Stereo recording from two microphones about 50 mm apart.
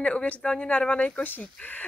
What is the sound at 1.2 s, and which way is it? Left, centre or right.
Speech, left.